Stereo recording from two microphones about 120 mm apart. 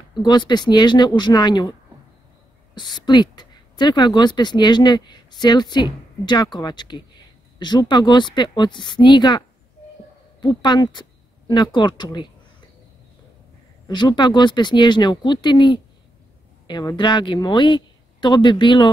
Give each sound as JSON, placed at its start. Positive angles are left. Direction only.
{"t": 0.1, "sound": "speech", "side_deg": 35}
{"t": 10.4, "sound": "speech", "side_deg": 35}
{"t": 13.8, "sound": "speech", "side_deg": 35}